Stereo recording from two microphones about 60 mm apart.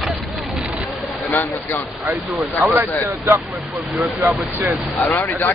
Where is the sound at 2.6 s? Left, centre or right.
Right.